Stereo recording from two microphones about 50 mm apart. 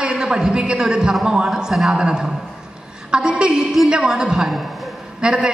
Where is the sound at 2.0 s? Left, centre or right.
Centre.